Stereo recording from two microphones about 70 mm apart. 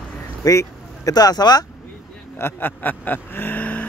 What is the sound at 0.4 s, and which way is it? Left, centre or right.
Speech, left.